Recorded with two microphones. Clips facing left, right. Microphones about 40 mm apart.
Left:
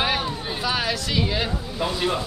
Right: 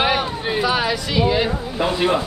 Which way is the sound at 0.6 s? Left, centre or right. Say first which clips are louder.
Right 4 dB; centre.